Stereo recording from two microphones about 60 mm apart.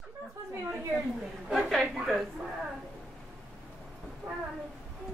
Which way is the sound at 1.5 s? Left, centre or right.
Centre.